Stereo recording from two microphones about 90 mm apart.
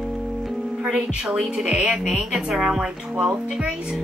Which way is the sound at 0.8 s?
10° right (ahead or behind).